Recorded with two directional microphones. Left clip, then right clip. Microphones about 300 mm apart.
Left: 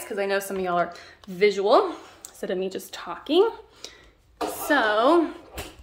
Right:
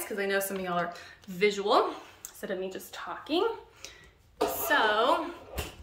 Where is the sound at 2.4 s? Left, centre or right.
Left.